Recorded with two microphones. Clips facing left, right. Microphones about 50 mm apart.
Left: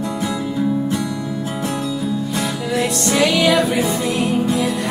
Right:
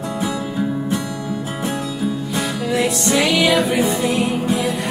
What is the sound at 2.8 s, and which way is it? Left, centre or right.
Music, centre.